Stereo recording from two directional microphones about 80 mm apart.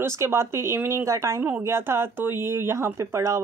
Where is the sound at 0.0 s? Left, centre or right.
Right.